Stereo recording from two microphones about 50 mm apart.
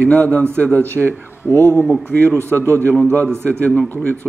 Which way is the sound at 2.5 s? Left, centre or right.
Left.